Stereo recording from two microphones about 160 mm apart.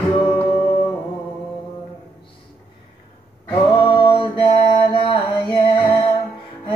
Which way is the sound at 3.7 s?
30° left (ahead or behind).